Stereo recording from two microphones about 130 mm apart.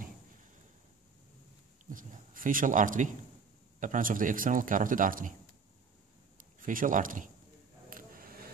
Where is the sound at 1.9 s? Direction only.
90° right.